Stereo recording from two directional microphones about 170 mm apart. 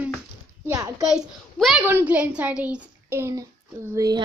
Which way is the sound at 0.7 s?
20° right (ahead or behind).